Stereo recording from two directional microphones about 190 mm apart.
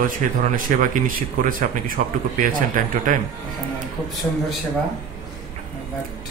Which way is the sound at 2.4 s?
45° right (ahead or behind).